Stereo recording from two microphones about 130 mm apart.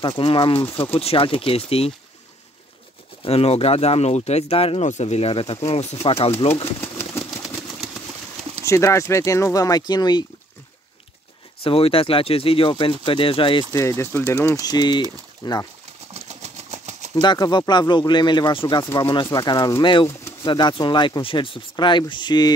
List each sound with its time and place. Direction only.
0.0 s speech: 40° left (ahead or behind)
3.3 s speech: 50° left (ahead or behind)
4.8 s speech: 60° left (ahead or behind)
6.8 s a sound: 15° left (ahead or behind)
8.6 s speech: 25° left (ahead or behind)
11.6 s speech: 45° left (ahead or behind)
13.7 s speech: 20° left (ahead or behind)
14.6 s speech: 30° left (ahead or behind)
16.1 s a sound: 55° right (ahead or behind)
17.1 s speech: 35° left (ahead or behind)